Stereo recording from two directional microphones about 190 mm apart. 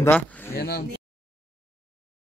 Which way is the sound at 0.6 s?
55° left (ahead or behind).